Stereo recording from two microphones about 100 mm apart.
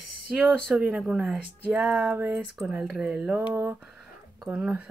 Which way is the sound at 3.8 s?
5° right (ahead or behind).